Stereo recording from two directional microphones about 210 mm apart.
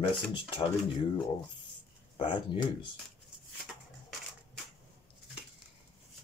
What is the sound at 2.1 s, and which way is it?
Speech, 25° left (ahead or behind).